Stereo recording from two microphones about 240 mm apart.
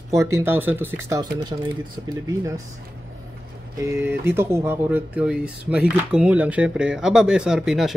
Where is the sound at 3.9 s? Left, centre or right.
Centre.